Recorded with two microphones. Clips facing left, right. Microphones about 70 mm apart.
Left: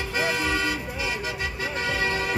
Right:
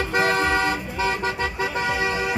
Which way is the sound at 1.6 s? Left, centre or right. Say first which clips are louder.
Right 3 dB; right.